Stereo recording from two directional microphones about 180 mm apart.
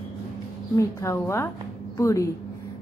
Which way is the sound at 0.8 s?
15° left (ahead or behind).